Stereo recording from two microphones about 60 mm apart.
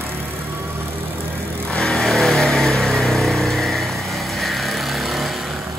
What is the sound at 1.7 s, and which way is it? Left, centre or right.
Vehicle, centre.